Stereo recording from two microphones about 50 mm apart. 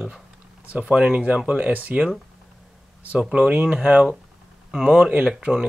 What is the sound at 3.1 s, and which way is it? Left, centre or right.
Speech, centre.